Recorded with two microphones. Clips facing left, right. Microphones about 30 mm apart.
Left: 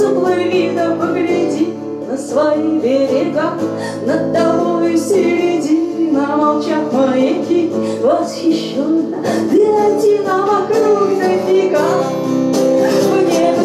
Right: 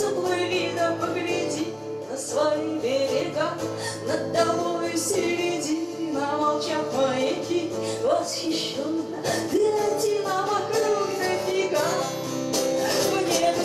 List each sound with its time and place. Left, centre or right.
0.2 s music: left
9.3 s music: left